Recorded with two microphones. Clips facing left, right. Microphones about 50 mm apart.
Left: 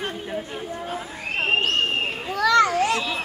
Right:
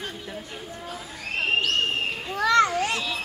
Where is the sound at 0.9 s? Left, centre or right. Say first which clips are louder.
Left 4 dB; left.